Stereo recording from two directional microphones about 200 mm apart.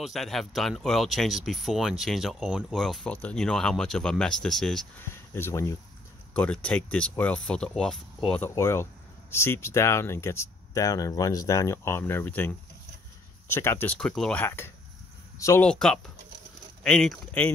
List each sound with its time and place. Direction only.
0.0 s speech: centre (ahead or behind)
5.1 s speech: 15° left (ahead or behind)
15.6 s speech: 5° left (ahead or behind)